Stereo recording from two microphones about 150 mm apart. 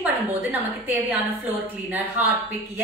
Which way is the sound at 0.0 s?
10° right (ahead or behind).